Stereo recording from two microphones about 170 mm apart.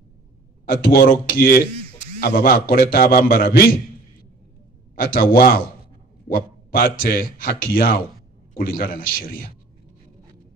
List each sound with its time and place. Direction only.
0.7 s a man's voice: 55° left (ahead or behind)
4.9 s a man's voice: 55° left (ahead or behind)